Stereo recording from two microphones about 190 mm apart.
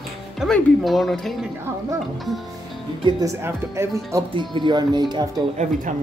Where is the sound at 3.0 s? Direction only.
20° right (ahead or behind).